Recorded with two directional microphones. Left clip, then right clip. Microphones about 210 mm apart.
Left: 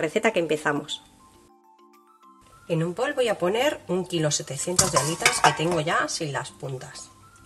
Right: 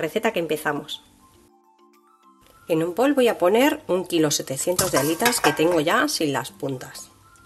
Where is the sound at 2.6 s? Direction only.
45° right (ahead or behind).